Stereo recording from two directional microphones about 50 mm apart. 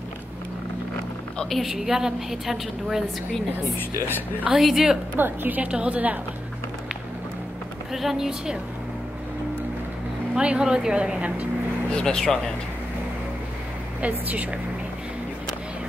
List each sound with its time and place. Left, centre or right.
1.7 s a woman's voice: centre
4.5 s a woman's voice: centre
5.1 s a woman's voice: right
5.7 s a woman's voice: right
7.9 s a woman's voice: centre
10.3 s a woman's voice: right
11.9 s speech: centre
14.0 s a woman's voice: right